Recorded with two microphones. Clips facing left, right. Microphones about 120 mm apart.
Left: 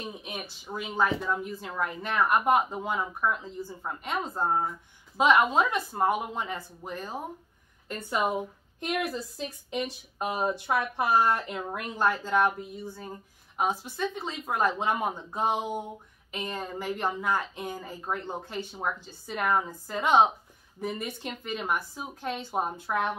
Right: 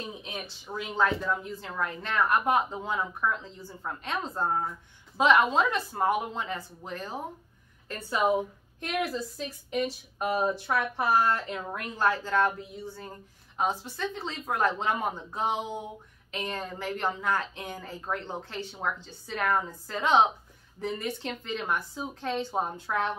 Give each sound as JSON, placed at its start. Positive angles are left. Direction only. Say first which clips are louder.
{"t": 0.0, "sound": "speech", "louder": "even", "side_deg": 10}